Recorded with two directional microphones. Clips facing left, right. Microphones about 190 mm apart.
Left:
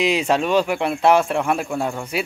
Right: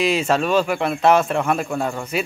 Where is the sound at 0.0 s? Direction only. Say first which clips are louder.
Even; 15° left (ahead or behind).